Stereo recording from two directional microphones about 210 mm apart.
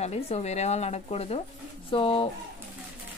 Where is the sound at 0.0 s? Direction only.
30° left (ahead or behind).